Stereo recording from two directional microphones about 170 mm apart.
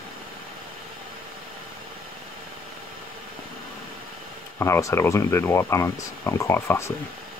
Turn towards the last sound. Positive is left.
turn(degrees=15)  # may be behind; listen again after turning